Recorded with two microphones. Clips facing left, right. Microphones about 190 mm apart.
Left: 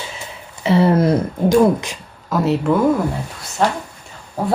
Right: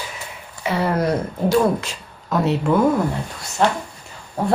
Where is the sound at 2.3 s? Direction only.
Centre (ahead or behind).